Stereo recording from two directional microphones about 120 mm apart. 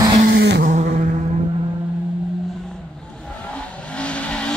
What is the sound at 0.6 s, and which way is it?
Music, 90° right.